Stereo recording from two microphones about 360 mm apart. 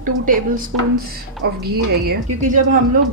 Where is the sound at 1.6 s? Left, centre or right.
Right.